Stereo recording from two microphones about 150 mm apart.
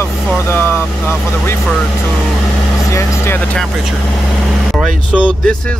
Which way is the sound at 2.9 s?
20° left (ahead or behind).